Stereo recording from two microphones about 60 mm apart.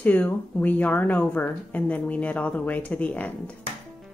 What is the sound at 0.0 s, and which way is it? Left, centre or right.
Speech, left.